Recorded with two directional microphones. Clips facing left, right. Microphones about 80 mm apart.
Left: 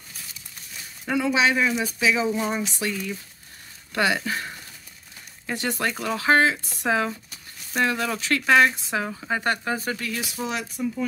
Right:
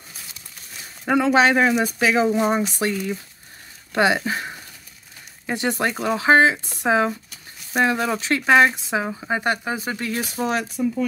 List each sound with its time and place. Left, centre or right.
1.0 s speech: right
3.9 s speech: right
9.9 s speech: right